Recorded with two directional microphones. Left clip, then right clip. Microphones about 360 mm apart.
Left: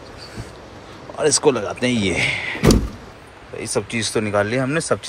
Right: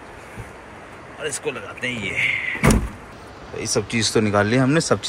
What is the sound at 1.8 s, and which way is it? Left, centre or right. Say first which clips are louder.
Speech: left 5 dB; centre.